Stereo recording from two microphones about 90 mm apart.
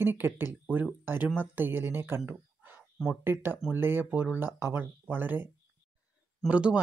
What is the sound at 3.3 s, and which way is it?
Speech, 25° right (ahead or behind).